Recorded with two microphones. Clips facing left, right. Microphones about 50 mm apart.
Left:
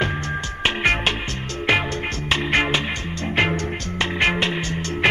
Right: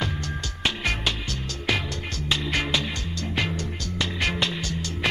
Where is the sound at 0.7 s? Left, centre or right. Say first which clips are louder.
Left 6 dB; left.